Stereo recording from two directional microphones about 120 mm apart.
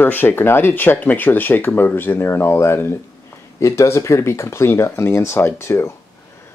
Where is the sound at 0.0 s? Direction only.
15° left (ahead or behind).